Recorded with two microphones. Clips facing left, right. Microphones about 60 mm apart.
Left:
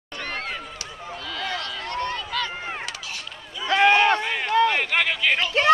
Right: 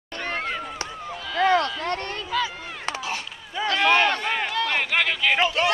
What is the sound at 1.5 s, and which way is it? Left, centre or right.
Run, right.